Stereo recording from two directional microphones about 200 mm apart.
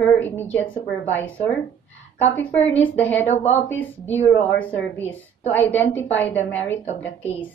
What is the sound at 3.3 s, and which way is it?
Speech, 35° left (ahead or behind).